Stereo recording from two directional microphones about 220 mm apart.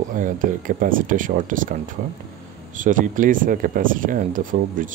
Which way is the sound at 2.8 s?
35° right (ahead or behind).